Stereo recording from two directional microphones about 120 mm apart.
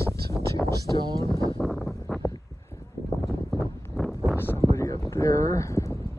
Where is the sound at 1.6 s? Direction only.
Centre (ahead or behind).